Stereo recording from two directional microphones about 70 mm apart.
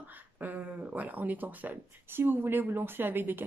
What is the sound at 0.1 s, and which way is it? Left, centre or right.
Speech, right.